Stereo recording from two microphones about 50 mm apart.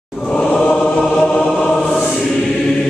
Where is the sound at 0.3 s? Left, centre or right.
Centre.